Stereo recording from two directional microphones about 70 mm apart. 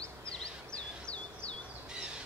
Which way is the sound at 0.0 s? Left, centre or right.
Centre.